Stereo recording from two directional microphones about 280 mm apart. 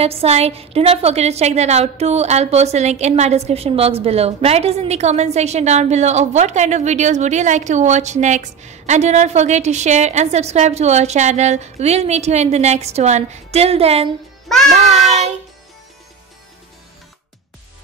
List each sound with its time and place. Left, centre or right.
0.0 s a woman's voice: right